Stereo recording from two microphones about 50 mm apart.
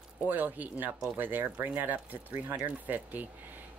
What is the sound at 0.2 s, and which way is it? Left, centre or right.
Speech, right.